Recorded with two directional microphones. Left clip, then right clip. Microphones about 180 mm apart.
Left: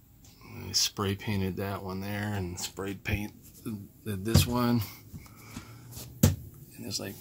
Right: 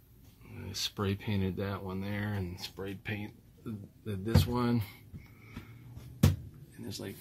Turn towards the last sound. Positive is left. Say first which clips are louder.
# left 6 dB
turn(degrees=10)  # may be behind; listen again after turning